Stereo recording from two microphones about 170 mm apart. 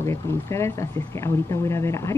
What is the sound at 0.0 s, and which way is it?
Speech, 15° left (ahead or behind).